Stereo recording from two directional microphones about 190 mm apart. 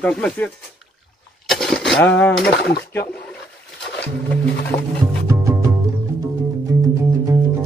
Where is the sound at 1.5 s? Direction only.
Centre (ahead or behind).